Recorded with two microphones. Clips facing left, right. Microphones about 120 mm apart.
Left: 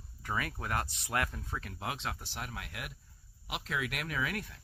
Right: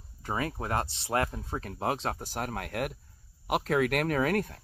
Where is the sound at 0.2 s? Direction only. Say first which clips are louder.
Right 5 dB; 30° right (ahead or behind).